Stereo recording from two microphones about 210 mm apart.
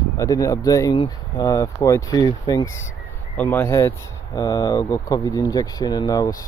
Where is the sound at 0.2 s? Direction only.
15° left (ahead or behind).